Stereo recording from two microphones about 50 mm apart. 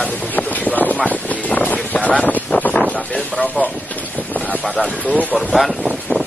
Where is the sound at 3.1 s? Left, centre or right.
Left.